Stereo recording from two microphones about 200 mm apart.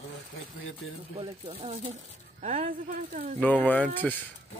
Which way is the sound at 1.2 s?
30° right (ahead or behind).